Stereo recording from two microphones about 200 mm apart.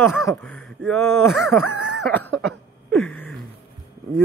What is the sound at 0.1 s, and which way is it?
Speech, centre (ahead or behind).